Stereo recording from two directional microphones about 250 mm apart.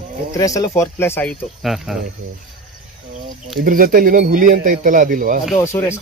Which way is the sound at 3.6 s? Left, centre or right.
Right.